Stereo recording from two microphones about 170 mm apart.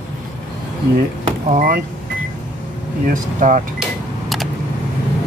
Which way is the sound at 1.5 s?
55° right (ahead or behind).